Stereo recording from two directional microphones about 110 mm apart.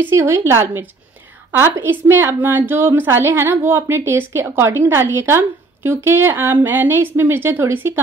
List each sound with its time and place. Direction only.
0.0 s a woman's voice: 25° right (ahead or behind)